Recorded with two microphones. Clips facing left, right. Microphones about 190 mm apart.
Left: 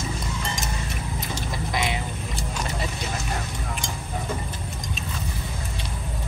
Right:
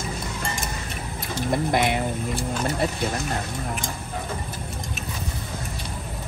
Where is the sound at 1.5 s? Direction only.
55° right (ahead or behind).